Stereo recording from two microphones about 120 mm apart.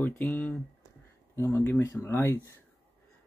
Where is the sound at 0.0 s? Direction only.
15° left (ahead or behind).